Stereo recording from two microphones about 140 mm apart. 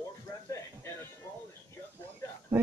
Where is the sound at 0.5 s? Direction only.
20° left (ahead or behind).